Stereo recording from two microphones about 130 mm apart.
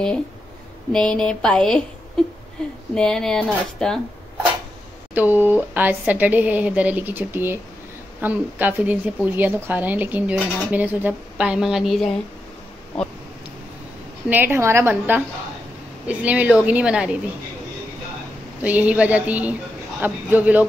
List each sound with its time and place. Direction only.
0.9 s speech: 5° left (ahead or behind)
2.9 s speech: 5° left (ahead or behind)
5.1 s a woman's voice: 15° right (ahead or behind)
14.3 s a woman's voice: 15° right (ahead or behind)
18.6 s a woman's voice: 10° right (ahead or behind)